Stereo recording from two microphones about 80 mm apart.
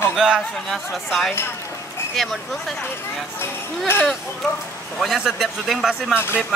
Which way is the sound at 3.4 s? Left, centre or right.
Left.